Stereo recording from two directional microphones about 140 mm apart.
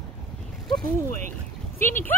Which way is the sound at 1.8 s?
15° left (ahead or behind).